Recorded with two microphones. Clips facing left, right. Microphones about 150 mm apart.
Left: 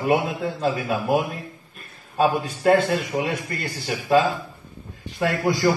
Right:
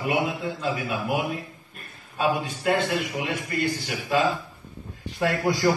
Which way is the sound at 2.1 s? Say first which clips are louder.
Left 4 dB; 40° left (ahead or behind).